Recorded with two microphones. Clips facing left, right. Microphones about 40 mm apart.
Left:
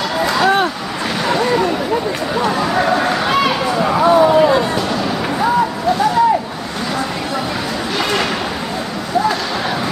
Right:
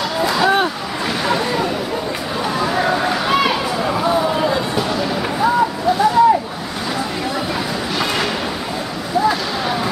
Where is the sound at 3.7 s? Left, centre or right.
Centre.